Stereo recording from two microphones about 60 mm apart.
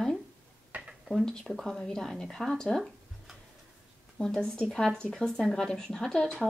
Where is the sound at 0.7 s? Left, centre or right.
Right.